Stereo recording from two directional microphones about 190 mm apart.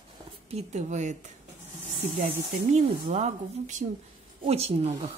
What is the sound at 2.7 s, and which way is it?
A woman's voice, 35° right (ahead or behind).